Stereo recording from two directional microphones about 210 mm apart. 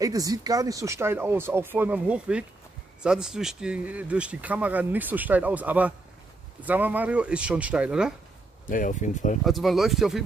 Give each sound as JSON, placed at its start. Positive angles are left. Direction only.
{"t": 0.0, "sound": "speech", "side_deg": -15}
{"t": 8.6, "sound": "speech", "side_deg": 40}
{"t": 9.4, "sound": "speech", "side_deg": 0}